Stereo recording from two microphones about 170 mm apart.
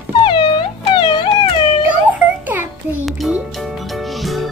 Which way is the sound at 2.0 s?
10° right (ahead or behind).